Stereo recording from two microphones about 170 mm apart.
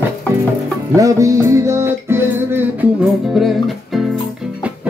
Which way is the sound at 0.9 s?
20° right (ahead or behind).